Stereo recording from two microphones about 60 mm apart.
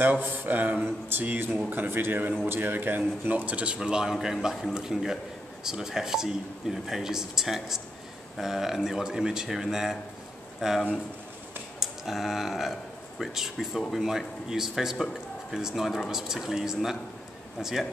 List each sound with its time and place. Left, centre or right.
0.0 s speech: right
0.8 s speech: right; by 10.8 s centre
11.8 s a sound: centre
13.2 s speech: centre